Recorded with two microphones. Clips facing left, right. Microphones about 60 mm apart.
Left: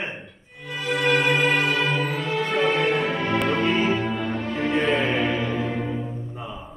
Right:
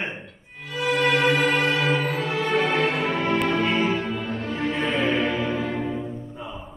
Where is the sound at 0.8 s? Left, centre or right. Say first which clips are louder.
Right 1 dB; centre.